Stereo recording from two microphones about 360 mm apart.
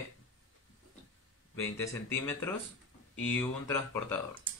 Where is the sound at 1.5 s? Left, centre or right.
Centre.